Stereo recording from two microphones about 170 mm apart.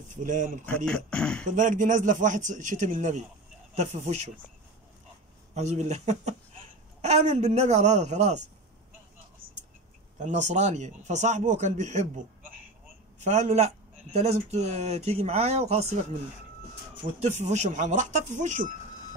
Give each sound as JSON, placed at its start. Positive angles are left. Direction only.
{"t": 0.1, "sound": "speech", "side_deg": -50}
{"t": 0.7, "sound": "speech", "side_deg": 5}
{"t": 1.5, "sound": "speech", "side_deg": -50}
{"t": 5.5, "sound": "speech", "side_deg": -40}
{"t": 10.1, "sound": "speech", "side_deg": -45}
{"t": 13.2, "sound": "speech", "side_deg": -45}
{"t": 17.2, "sound": "speech", "side_deg": -40}